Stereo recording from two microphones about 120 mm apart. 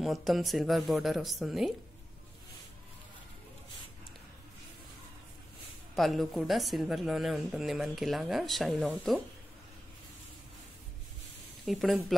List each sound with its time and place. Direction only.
0.0 s speech: centre (ahead or behind)
5.9 s speech: centre (ahead or behind)
11.6 s speech: centre (ahead or behind)